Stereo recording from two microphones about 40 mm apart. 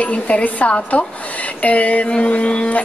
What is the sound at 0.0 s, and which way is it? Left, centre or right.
A woman's voice, left.